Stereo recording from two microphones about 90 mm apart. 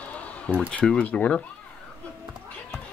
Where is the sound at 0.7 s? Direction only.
10° left (ahead or behind).